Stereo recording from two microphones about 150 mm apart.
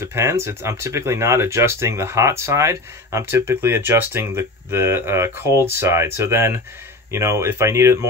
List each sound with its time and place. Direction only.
0.0 s speech: 20° right (ahead or behind)